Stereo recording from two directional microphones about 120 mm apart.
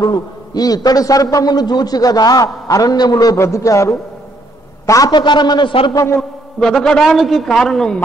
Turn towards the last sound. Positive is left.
turn(degrees=5)  # may be behind; listen again after turning